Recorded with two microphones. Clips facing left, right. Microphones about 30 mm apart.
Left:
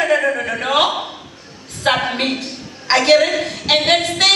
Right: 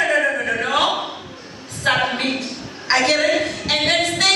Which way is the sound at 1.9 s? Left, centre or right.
Left.